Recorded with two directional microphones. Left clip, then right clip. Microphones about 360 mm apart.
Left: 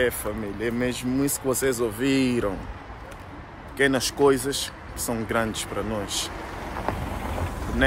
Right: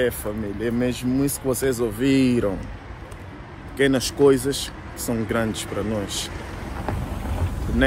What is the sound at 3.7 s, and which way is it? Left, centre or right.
Speech, centre.